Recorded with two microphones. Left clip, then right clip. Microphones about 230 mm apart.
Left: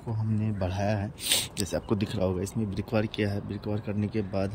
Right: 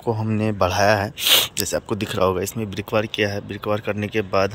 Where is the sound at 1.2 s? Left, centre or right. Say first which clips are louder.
Right 10 dB; centre.